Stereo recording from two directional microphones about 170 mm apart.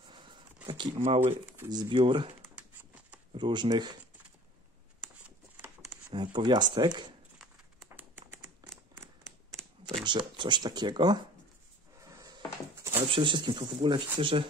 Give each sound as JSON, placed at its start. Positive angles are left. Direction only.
{"t": 0.0, "sound": "a sound", "side_deg": -30}
{"t": 1.7, "sound": "speech", "side_deg": -25}
{"t": 2.5, "sound": "a sound", "side_deg": -10}
{"t": 3.3, "sound": "speech", "side_deg": -25}
{"t": 6.1, "sound": "speech", "side_deg": -25}
{"t": 7.3, "sound": "crumpling", "side_deg": -10}
{"t": 10.0, "sound": "speech", "side_deg": -25}
{"t": 12.0, "sound": "drawer open or close", "side_deg": -20}
{"t": 13.1, "sound": "speech", "side_deg": -30}